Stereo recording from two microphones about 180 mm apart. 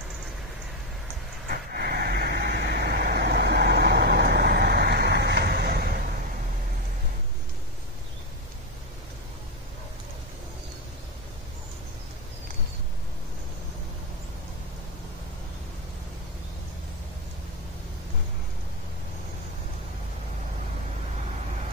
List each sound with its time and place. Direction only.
1.5 s vehicle: 60° right (ahead or behind)